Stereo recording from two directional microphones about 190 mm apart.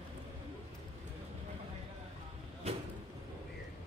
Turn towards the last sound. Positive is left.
turn(degrees=-30)  # may be behind; listen again after turning